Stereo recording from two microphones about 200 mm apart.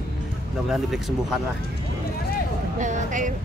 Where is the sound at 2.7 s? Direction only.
40° right (ahead or behind).